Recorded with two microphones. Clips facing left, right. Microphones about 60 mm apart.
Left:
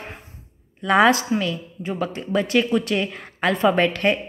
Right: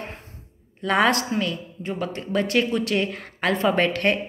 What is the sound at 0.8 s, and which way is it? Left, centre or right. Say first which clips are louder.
Speech: left 4 dB; centre.